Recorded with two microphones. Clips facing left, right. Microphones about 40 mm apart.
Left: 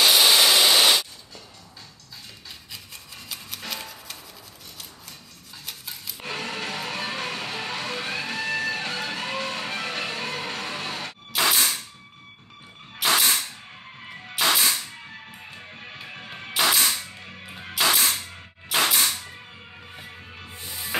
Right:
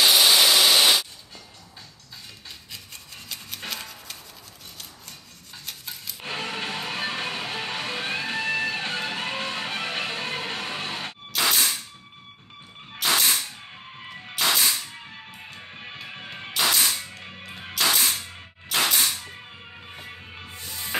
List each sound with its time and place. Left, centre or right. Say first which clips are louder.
0.0 s wood: even; centre
3.3 s music: even; centre
5.7 s rub: even; centre
6.3 s music: right 1 dB; right
11.3 s a sound: left 1 dB; centre
13.0 s a sound: left 1 dB; centre
16.5 s music: left 1 dB; centre
16.9 s music: even; centre
17.7 s music: left 1 dB; centre
18.7 s cap gun: left 1 dB; centre
20.6 s music: left 1 dB; centre